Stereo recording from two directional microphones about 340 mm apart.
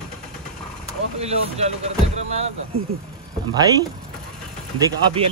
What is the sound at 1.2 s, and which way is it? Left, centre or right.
Speech, centre.